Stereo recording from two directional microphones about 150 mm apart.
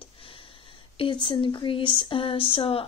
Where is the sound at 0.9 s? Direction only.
35° left (ahead or behind).